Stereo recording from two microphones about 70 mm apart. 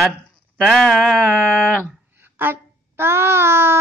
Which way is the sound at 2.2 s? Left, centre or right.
Right.